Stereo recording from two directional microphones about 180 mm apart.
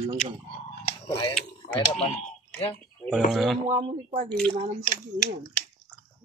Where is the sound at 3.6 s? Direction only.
35° right (ahead or behind).